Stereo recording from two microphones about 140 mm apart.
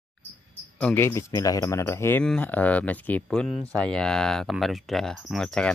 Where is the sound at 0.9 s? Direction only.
20° left (ahead or behind).